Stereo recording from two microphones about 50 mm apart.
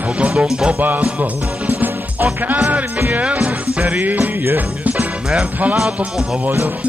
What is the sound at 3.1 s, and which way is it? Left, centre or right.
Speech, right.